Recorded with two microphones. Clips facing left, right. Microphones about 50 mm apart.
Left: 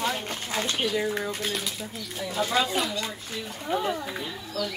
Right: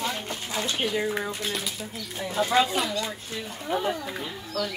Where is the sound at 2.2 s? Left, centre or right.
Right.